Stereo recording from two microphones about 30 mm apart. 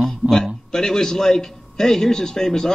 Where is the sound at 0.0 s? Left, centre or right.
Centre.